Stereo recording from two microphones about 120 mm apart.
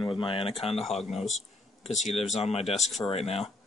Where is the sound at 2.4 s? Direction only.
60° left (ahead or behind).